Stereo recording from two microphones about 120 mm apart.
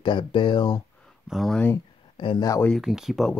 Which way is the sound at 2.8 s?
Centre (ahead or behind).